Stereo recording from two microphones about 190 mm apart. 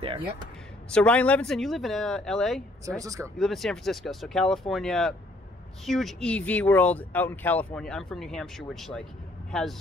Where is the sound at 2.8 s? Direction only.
15° right (ahead or behind).